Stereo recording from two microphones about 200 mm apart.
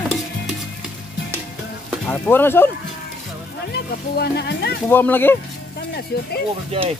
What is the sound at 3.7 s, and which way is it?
Speech, 55° left (ahead or behind).